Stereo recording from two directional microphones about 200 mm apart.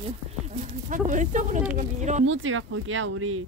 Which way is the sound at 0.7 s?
40° right (ahead or behind).